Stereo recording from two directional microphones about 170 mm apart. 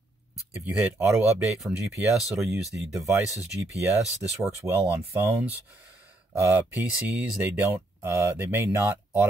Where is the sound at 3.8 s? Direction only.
15° right (ahead or behind).